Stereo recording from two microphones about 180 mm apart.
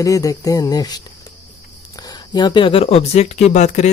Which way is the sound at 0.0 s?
20° left (ahead or behind).